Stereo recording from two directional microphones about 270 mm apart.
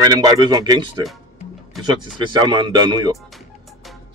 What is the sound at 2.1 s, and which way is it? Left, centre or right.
A man's voice, centre.